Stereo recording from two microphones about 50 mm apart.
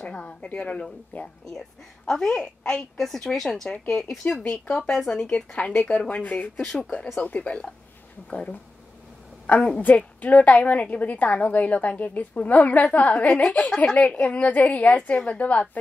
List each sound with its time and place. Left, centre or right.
0.0 s a woman's voice: left
1.1 s a woman's voice: left
2.0 s speech: centre
4.4 s speech: left
5.6 s a woman's voice: left
9.8 s a woman's voice: left